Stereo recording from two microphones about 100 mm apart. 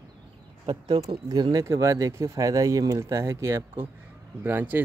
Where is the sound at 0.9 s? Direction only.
40° right (ahead or behind).